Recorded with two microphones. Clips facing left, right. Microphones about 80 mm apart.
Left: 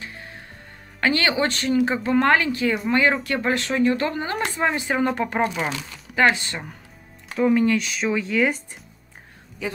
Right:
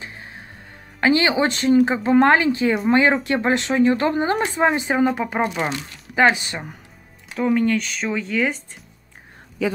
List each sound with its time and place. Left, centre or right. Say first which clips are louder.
1.0 s speech: right 3 dB; centre
5.0 s speech: right 2 dB; centre
7.3 s speech: even; centre